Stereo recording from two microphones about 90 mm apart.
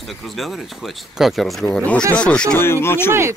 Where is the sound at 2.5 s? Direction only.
25° left (ahead or behind).